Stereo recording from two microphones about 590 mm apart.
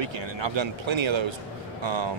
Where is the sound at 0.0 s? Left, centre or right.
Right.